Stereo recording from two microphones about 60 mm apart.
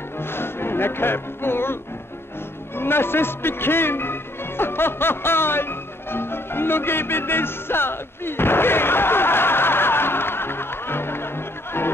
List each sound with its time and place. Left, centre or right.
0.2 s speech: left
2.8 s a man's voice: left